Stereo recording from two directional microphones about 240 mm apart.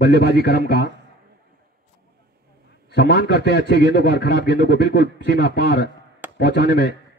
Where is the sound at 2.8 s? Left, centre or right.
Left.